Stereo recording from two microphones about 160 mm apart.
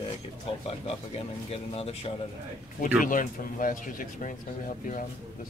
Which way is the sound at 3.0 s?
55° left (ahead or behind).